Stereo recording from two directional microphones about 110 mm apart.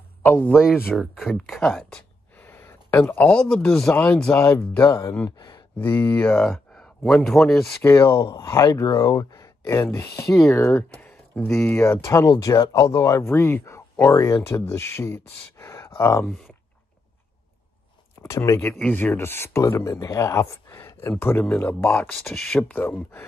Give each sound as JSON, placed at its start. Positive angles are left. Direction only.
{"t": 0.2, "sound": "speech", "side_deg": 20}
{"t": 0.9, "sound": "speech", "side_deg": 0}
{"t": 1.5, "sound": "a sound", "side_deg": 5}
{"t": 3.1, "sound": "speech", "side_deg": 10}
{"t": 3.9, "sound": "speech", "side_deg": 15}
{"t": 5.8, "sound": "speech", "side_deg": 15}
{"t": 7.8, "sound": "speech", "side_deg": 25}
{"t": 10.2, "sound": "speech", "side_deg": 0}
{"t": 10.5, "sound": "speech", "side_deg": 25}
{"t": 18.2, "sound": "speech", "side_deg": 25}
{"t": 18.6, "sound": "speech", "side_deg": 10}
{"t": 22.2, "sound": "speech", "side_deg": 5}